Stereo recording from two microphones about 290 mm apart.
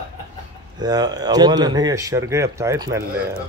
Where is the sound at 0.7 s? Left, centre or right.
Centre.